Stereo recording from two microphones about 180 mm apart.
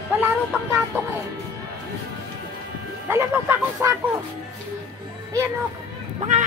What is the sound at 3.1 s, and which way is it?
Speech, 15° right (ahead or behind).